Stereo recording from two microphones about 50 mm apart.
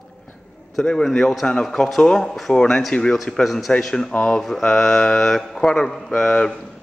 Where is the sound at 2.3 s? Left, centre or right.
Centre.